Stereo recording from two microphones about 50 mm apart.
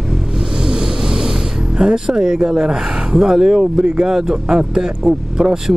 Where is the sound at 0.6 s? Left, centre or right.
Centre.